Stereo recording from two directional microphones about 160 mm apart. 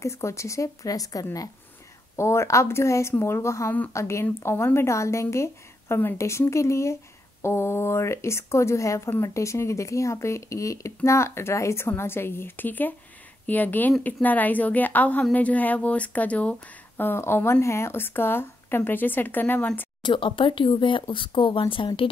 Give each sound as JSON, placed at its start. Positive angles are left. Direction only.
{"t": 0.0, "sound": "a woman's voice", "side_deg": 15}
{"t": 20.0, "sound": "speech", "side_deg": 30}